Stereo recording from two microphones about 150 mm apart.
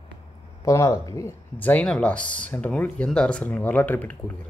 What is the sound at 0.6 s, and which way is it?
Speech, 20° left (ahead or behind).